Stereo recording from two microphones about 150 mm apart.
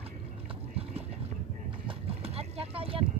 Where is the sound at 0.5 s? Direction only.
40° right (ahead or behind).